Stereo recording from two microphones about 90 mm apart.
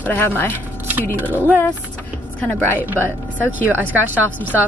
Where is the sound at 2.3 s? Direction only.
20° left (ahead or behind).